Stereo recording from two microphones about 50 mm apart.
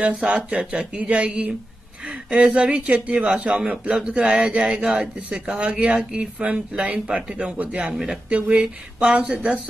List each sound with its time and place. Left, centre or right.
0.0 s a man's voice: centre
7.9 s speech: centre
8.3 s speech: centre